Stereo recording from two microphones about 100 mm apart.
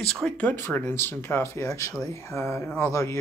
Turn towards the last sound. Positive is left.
turn(degrees=30)  # may be behind; listen again after turning